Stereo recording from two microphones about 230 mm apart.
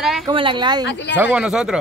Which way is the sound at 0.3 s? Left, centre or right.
Right.